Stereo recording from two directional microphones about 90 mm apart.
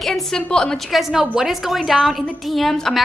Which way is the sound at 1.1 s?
5° right (ahead or behind).